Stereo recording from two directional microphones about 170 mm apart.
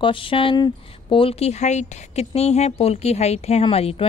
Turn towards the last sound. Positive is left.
turn(degrees=35)  # may be behind; listen again after turning